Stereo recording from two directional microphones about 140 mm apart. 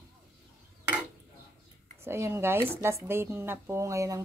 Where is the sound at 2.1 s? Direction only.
20° right (ahead or behind).